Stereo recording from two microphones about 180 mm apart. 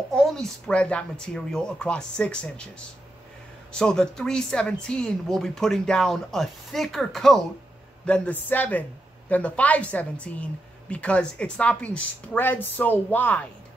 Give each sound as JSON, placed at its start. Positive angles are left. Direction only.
{"t": 0.1, "sound": "speech", "side_deg": 0}
{"t": 3.7, "sound": "a woman's voice", "side_deg": 5}